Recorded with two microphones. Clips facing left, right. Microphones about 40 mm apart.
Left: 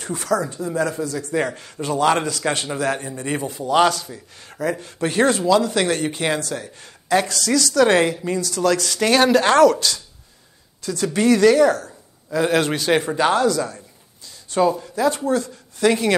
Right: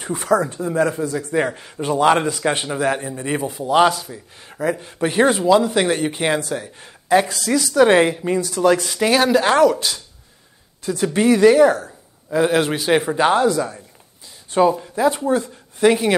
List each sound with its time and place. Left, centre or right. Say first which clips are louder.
0.0 s speech: right 3 dB; right
9.1 s speech: left 1 dB; centre
9.8 s speech: left 1 dB; centre